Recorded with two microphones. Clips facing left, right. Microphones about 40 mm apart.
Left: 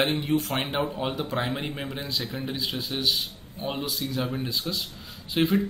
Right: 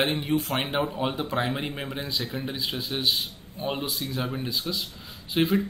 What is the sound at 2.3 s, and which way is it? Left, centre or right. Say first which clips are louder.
Speech: even; centre.